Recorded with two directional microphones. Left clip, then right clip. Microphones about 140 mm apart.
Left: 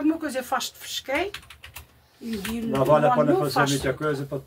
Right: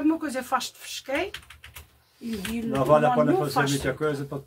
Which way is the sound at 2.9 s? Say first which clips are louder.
Left 1 dB; 35° right (ahead or behind).